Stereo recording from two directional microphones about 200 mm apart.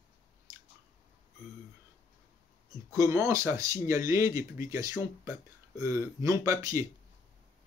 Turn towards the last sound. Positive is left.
turn(degrees=-15)  # may be behind; listen again after turning